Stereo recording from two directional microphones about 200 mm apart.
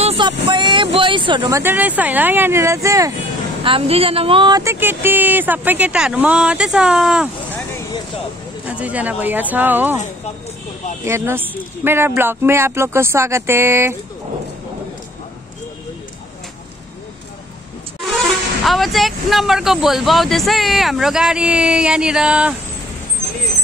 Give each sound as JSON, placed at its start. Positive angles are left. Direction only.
{"t": 0.5, "sound": "speech", "side_deg": -25}
{"t": 1.6, "sound": "speech", "side_deg": -10}
{"t": 3.6, "sound": "speech", "side_deg": -30}
{"t": 8.6, "sound": "speech", "side_deg": -5}
{"t": 11.1, "sound": "speech", "side_deg": -10}
{"t": 18.0, "sound": "speech", "side_deg": 0}